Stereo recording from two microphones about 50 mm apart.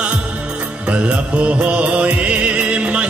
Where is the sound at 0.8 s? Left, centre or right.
Right.